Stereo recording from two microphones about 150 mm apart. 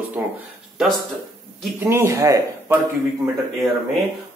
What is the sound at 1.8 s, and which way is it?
Speech, 20° right (ahead or behind).